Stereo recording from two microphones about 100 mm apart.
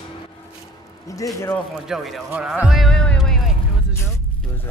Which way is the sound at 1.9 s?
Centre (ahead or behind).